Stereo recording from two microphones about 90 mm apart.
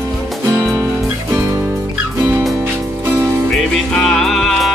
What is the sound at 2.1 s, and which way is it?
Music, 35° right (ahead or behind).